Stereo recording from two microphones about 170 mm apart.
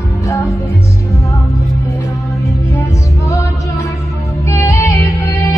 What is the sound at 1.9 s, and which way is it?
Music, 20° left (ahead or behind).